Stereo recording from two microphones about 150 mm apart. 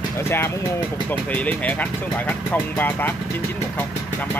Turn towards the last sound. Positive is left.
turn(degrees=15)  # may be behind; listen again after turning